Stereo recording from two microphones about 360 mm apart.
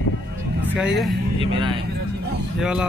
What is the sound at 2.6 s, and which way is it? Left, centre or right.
Speech, centre.